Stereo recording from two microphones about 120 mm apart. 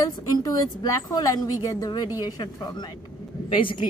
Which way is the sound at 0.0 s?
30° left (ahead or behind).